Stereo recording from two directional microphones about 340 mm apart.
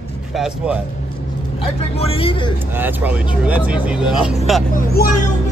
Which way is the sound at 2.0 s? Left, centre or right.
Centre.